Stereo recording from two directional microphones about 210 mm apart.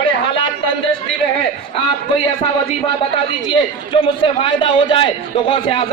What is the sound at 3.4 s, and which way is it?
A man's voice, 25° left (ahead or behind).